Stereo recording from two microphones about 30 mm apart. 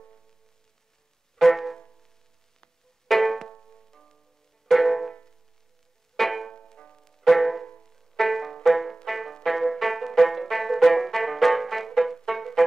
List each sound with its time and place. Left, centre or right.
1.4 s music: centre
3.1 s music: centre
3.6 s music: centre
4.6 s music: centre
6.1 s music: centre